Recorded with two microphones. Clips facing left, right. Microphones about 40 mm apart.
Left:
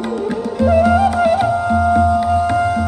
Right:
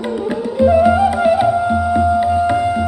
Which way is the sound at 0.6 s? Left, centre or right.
Centre.